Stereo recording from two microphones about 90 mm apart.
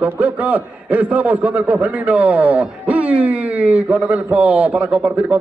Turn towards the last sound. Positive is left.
turn(degrees=-15)  # may be behind; listen again after turning